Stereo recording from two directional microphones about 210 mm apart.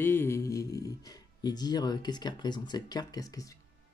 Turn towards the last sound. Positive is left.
turn(degrees=20)  # may be behind; listen again after turning